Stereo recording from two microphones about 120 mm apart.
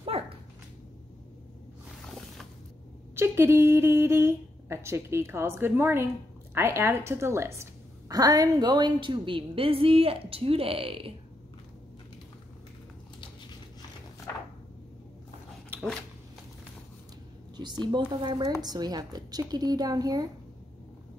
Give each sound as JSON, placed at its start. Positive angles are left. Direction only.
{"t": 0.1, "sound": "dog", "side_deg": -55}
{"t": 3.2, "sound": "a woman's voice", "side_deg": -20}
{"t": 17.6, "sound": "a woman's voice", "side_deg": -35}